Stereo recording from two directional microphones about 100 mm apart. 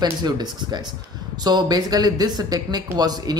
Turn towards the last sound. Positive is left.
turn(degrees=-40)  # may be behind; listen again after turning